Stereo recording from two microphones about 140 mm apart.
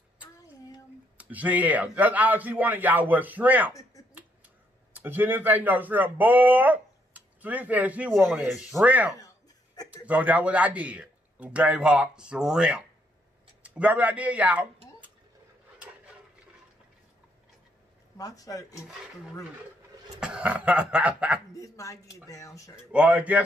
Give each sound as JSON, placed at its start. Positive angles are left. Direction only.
{"t": 1.1, "sound": "a man's voice", "side_deg": -10}
{"t": 4.9, "sound": "speech", "side_deg": -15}
{"t": 8.5, "sound": "speech", "side_deg": 0}
{"t": 8.8, "sound": "a man's voice", "side_deg": -10}
{"t": 18.1, "sound": "speech", "side_deg": 25}
{"t": 20.2, "sound": "a man's voice", "side_deg": -5}
{"t": 21.5, "sound": "speech", "side_deg": 25}
{"t": 22.8, "sound": "a man's voice", "side_deg": -10}